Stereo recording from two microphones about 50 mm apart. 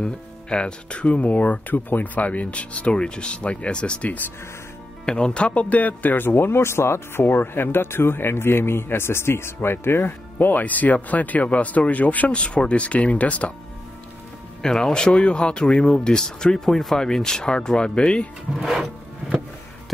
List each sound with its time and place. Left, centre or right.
0.0 s speech: centre; by 7.2 s left
7.2 s speech: left
10.6 s speech: left
14.6 s speech: centre
18.5 s wood: centre